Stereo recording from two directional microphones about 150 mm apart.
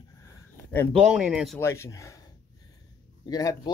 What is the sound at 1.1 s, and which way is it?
Speech, 5° right (ahead or behind).